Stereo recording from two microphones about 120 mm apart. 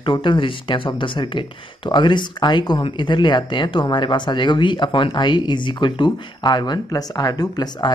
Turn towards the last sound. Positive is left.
turn(degrees=35)  # may be behind; listen again after turning